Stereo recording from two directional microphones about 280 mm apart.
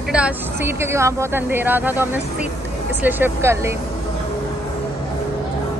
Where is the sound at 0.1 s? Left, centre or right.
Centre.